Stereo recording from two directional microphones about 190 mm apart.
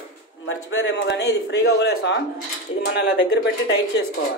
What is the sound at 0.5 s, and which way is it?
A man's voice, 75° left (ahead or behind).